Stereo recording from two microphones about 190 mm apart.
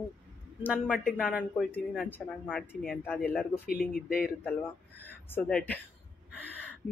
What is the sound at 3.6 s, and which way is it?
Speech, 50° left (ahead or behind).